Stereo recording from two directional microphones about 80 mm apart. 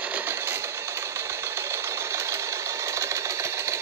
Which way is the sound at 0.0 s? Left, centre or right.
Right.